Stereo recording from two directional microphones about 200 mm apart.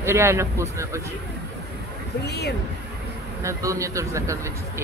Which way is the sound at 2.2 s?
55° left (ahead or behind).